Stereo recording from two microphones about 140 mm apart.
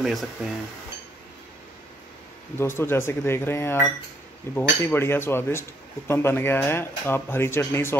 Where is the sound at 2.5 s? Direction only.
20° left (ahead or behind).